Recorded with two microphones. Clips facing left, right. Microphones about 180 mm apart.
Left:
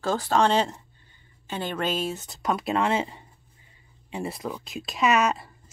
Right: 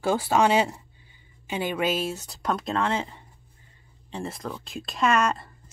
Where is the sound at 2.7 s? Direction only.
15° left (ahead or behind).